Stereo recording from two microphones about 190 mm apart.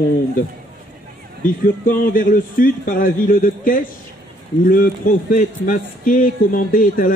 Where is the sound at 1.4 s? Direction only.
45° left (ahead or behind).